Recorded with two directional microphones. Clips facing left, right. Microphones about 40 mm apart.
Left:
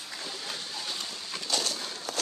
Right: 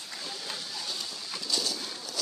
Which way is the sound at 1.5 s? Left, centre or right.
Left.